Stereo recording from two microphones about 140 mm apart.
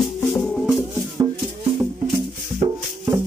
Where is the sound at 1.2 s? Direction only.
25° right (ahead or behind).